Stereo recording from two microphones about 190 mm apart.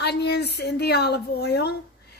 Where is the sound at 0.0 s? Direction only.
60° left (ahead or behind).